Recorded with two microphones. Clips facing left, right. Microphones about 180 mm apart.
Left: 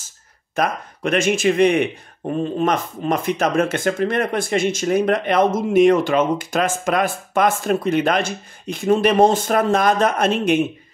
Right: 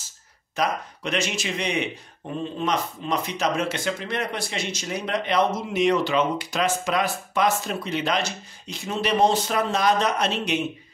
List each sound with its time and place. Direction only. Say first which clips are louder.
0.6 s speech: left 4 dB; 50° left (ahead or behind)